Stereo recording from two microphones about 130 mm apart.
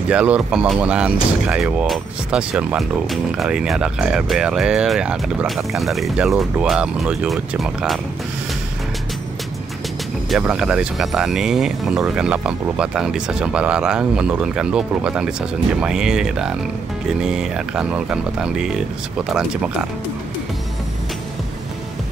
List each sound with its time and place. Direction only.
0.1 s speech: 10° right (ahead or behind)
10.4 s speech: 5° right (ahead or behind)